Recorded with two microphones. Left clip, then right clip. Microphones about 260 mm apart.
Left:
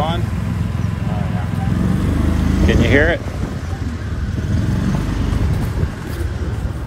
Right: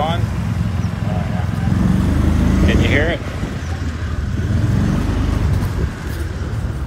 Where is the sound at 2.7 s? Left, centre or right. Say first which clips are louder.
Left 4 dB; left.